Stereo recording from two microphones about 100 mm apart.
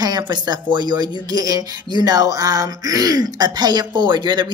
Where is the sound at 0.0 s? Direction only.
45° right (ahead or behind).